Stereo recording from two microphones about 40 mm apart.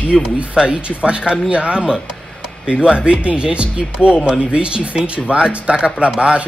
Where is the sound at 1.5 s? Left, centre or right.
Right.